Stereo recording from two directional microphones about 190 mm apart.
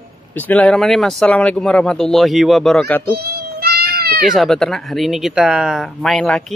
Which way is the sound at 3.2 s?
55° right (ahead or behind).